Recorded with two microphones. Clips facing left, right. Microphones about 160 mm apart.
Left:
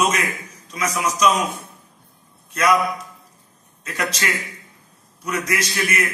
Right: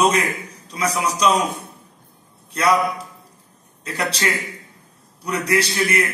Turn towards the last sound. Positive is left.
turn(degrees=-30)  # may be behind; listen again after turning